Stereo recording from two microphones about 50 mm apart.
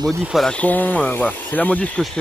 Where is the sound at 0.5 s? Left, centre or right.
Left.